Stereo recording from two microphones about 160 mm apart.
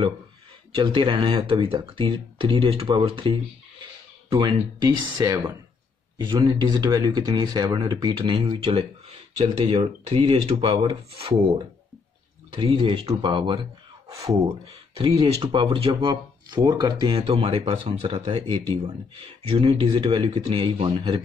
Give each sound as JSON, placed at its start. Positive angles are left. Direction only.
{"t": 0.7, "sound": "speech", "side_deg": -30}
{"t": 14.4, "sound": "speech", "side_deg": -35}